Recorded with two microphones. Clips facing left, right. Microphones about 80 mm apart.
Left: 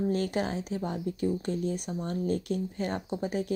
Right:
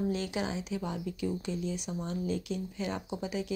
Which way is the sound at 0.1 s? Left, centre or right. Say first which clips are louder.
Left 4 dB; left.